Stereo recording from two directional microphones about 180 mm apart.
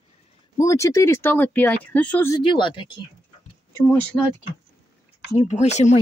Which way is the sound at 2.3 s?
25° left (ahead or behind).